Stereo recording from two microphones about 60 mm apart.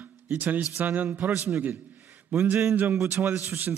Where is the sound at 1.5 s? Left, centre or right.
Right.